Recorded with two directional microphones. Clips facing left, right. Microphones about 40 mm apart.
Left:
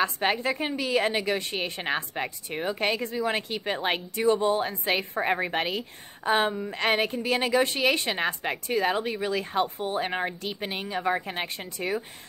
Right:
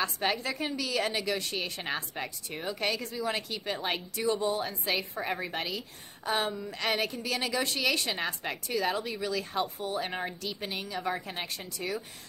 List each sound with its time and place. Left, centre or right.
0.0 s a woman's voice: left